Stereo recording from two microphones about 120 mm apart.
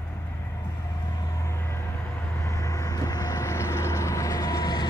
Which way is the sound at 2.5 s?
25° left (ahead or behind).